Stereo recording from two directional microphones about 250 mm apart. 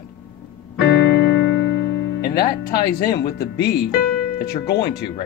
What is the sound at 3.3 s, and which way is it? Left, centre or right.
Speech, left.